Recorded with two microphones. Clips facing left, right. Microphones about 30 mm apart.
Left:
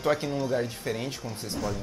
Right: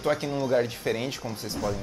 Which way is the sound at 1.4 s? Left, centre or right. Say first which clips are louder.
Right 2 dB; centre.